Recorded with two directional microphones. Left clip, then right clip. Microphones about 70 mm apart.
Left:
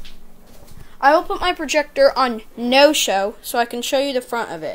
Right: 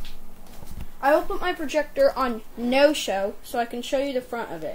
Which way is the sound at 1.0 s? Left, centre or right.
Left.